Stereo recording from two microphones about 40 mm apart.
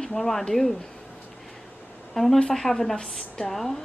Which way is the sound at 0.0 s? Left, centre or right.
Centre.